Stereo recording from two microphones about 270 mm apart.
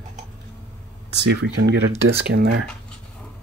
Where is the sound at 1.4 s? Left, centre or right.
Right.